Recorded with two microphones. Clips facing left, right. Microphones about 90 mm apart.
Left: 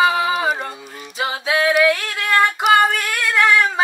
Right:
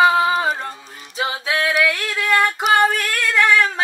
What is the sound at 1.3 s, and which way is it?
Music, 15° left (ahead or behind).